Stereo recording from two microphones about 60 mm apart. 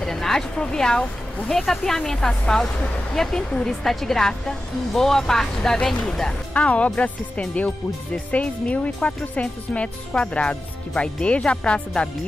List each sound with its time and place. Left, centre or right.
0.0 s a woman's voice: centre
6.5 s speech: left